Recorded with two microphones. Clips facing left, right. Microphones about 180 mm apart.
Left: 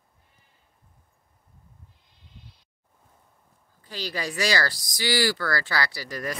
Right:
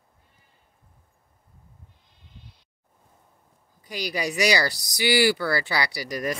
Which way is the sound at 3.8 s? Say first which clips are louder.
Right 3 dB; 15° right (ahead or behind).